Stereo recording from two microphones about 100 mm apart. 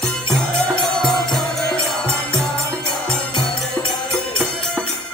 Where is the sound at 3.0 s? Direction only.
10° left (ahead or behind).